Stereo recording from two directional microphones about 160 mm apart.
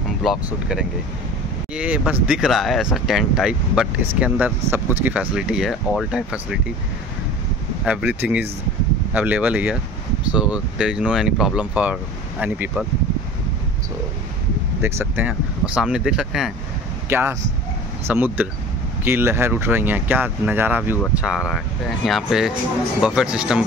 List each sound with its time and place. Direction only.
0.2 s speech: 5° right (ahead or behind)
7.8 s speech: 10° right (ahead or behind)
14.8 s speech: 15° right (ahead or behind)
17.1 s speech: 15° right (ahead or behind)